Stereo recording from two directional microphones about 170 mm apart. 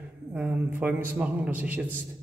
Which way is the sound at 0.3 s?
5° right (ahead or behind).